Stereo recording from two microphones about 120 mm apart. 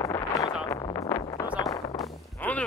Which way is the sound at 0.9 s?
25° left (ahead or behind).